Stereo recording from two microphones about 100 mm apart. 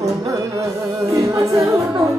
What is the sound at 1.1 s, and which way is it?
A capella, 30° right (ahead or behind).